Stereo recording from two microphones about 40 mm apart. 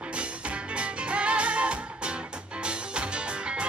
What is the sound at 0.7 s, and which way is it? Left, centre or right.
Music, right.